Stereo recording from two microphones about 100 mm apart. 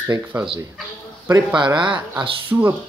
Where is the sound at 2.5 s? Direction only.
25° right (ahead or behind).